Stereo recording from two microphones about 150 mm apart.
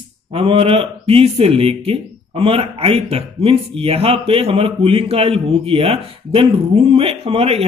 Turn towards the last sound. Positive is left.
turn(degrees=-40)  # may be behind; listen again after turning